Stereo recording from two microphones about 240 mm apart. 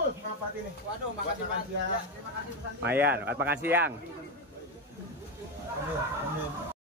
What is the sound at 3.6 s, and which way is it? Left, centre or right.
Speech, centre.